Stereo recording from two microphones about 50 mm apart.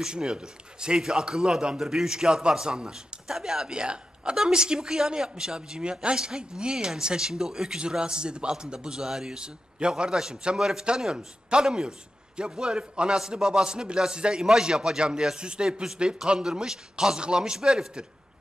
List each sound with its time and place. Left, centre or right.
0.0 s a man's voice: centre